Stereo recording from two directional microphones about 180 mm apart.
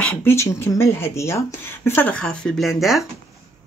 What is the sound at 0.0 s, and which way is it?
Speech, 15° left (ahead or behind).